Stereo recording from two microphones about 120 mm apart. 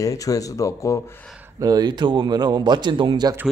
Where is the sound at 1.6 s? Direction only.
35° right (ahead or behind).